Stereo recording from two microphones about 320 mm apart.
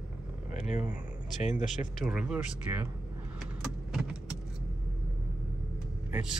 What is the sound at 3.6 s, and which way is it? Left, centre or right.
Vehicle, centre.